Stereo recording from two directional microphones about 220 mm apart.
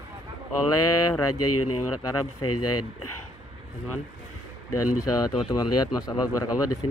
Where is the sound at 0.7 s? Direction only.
90° left.